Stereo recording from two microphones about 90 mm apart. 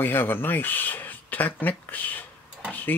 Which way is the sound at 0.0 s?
25° left (ahead or behind).